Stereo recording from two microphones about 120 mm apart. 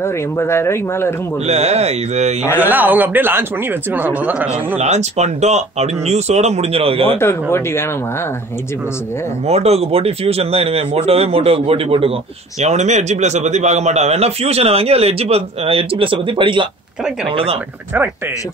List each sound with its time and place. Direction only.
0.0 s speech: 20° left (ahead or behind)
1.4 s a man's voice: 65° right (ahead or behind)
2.5 s speech: 15° right (ahead or behind)
4.7 s speech: 70° right (ahead or behind); by 7.2 s 55° right (ahead or behind)
7.5 s speech: 20° left (ahead or behind)
9.5 s a man's voice: 60° right (ahead or behind)
12.5 s a man's voice: 70° right (ahead or behind); by 17.6 s 50° right (ahead or behind)